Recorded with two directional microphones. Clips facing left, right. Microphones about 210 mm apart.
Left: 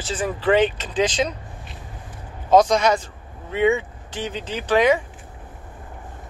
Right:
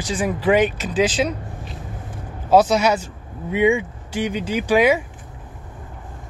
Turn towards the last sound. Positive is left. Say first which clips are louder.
# right 2 dB
turn(degrees=-10)  # may be behind; listen again after turning